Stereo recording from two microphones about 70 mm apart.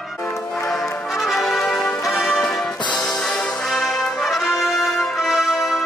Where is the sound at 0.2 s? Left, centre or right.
Left.